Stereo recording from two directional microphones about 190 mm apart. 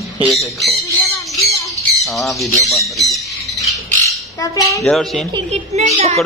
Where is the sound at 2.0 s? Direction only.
Centre (ahead or behind).